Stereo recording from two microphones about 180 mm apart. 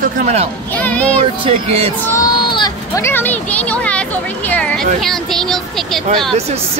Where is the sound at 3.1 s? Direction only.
10° left (ahead or behind).